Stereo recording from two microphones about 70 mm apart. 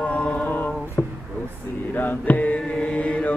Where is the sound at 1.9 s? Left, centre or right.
Left.